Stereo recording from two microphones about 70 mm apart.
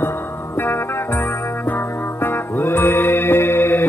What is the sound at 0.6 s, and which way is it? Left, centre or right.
Music, left.